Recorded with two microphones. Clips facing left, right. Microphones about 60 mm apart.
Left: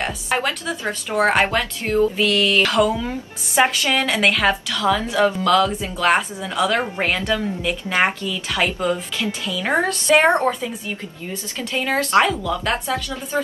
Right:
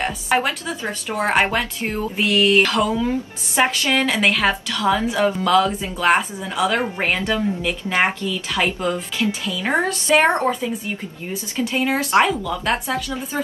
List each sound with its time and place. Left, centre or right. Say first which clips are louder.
0.0 s a woman's voice: right 2 dB; centre
1.4 s speech: even; right
2.6 s a woman's voice: left 1 dB; centre
4.8 s a woman's voice: even; centre
11.7 s a woman's voice: left 1 dB; centre